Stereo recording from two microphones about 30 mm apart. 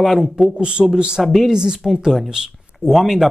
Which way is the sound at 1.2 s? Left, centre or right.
Centre.